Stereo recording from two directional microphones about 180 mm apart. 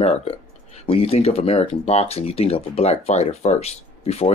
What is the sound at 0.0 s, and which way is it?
Speech, 35° left (ahead or behind).